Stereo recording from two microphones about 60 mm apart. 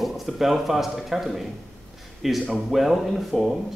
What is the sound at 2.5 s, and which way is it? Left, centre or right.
A man's voice, centre.